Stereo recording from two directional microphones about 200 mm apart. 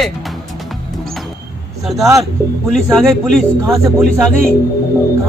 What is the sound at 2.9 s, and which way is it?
Speech, centre (ahead or behind).